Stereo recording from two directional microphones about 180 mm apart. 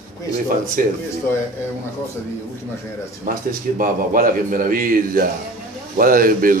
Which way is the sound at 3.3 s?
50° right (ahead or behind).